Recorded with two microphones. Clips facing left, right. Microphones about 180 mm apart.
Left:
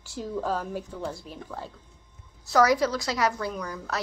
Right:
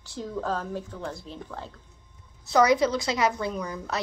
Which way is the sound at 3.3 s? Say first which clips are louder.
Right 2 dB; centre (ahead or behind).